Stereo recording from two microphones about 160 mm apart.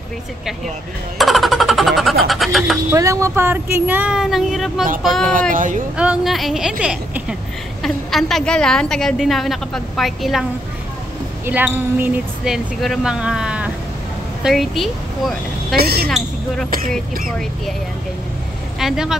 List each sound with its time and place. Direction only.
1.1 s a woman's voice: centre (ahead or behind)
2.9 s speech: 20° right (ahead or behind); by 4.8 s centre (ahead or behind)
5.5 s speech: 55° right (ahead or behind)
5.9 s a woman's voice: 5° right (ahead or behind)
11.4 s a woman's voice: 10° right (ahead or behind)
15.7 s a woman's voice: 75° right (ahead or behind)
17.3 s a woman's voice: 5° left (ahead or behind)
18.8 s speech: 5° right (ahead or behind)